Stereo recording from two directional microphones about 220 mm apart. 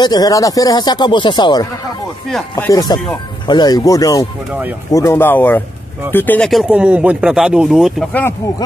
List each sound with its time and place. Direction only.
0.0 s speech: 15° left (ahead or behind)
4.5 s speech: 5° right (ahead or behind)
4.9 s speech: 10° left (ahead or behind)